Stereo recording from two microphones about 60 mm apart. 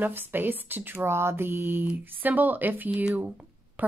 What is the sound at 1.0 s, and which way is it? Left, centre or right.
Speech, right.